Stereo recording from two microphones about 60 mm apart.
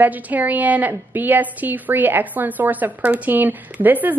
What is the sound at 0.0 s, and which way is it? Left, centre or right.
A woman's voice, right.